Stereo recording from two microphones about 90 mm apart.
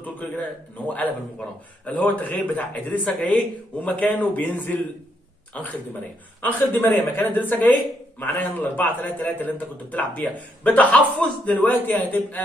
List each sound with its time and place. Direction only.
0.0 s a man's voice: 20° left (ahead or behind)